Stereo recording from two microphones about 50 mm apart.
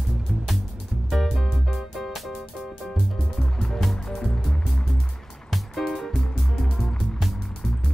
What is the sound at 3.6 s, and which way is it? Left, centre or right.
Music, centre.